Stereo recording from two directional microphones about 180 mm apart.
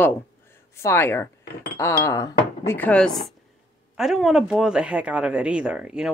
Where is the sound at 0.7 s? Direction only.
15° left (ahead or behind).